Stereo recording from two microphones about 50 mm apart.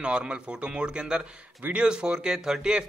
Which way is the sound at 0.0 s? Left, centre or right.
Right.